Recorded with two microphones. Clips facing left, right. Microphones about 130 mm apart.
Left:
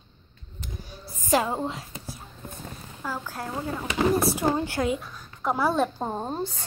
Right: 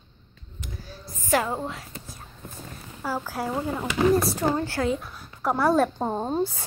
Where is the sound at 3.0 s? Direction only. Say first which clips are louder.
Right 4 dB; 10° right (ahead or behind).